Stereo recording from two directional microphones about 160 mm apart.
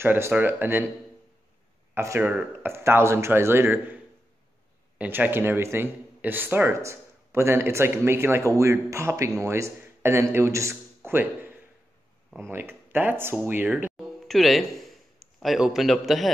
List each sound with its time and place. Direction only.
0.0 s speech: 15° right (ahead or behind)
2.0 s a man's voice: 15° right (ahead or behind)
14.2 s a man's voice: centre (ahead or behind)